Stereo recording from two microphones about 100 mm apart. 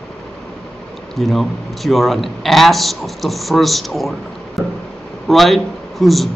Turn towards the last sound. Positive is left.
turn(degrees=0)  # may be behind; listen again after turning